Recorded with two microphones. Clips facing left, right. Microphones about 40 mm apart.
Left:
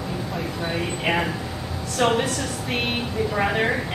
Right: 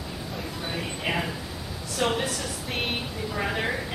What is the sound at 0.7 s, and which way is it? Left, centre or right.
A woman's voice, left.